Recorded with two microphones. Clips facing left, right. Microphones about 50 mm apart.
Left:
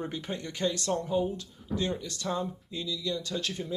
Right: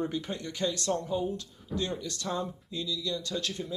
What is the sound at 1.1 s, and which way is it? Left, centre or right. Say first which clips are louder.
Speech: left 2 dB; centre.